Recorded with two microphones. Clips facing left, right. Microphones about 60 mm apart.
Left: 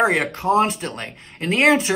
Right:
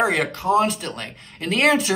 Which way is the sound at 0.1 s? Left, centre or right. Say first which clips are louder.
Left 1 dB; centre.